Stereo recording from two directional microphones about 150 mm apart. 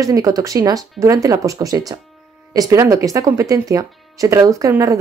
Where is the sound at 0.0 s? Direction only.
25° right (ahead or behind).